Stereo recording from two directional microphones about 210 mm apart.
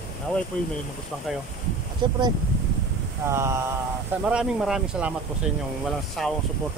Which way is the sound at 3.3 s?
15° right (ahead or behind).